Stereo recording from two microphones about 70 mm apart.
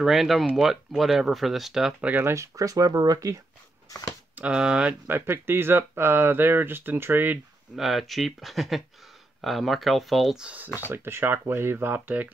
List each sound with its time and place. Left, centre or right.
0.0 s speech: centre
2.0 s speech: right
2.2 s speech: right
4.4 s speech: centre
5.0 s speech: right
7.7 s speech: centre
10.4 s speech: right
10.9 s speech: right